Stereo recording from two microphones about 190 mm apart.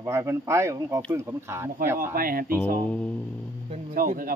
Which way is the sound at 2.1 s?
50° right (ahead or behind).